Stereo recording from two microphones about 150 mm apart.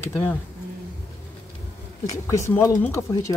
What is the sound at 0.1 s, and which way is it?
Speech, 15° left (ahead or behind).